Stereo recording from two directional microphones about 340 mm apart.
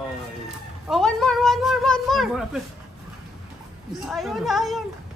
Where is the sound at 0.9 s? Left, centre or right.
Centre.